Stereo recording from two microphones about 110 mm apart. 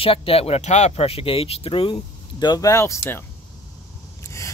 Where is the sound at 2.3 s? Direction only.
35° left (ahead or behind).